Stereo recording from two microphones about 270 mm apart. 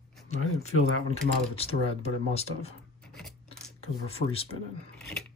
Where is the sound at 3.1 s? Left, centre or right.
Centre.